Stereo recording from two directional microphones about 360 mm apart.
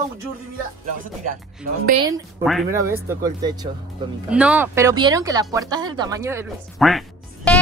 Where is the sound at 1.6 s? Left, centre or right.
Centre.